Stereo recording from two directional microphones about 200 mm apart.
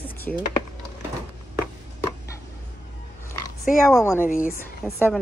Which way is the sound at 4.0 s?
15° left (ahead or behind).